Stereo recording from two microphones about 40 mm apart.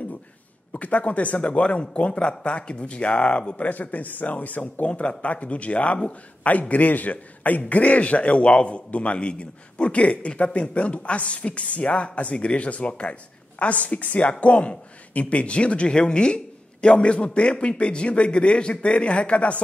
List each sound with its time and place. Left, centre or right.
0.7 s speech: left
3.6 s a man's voice: left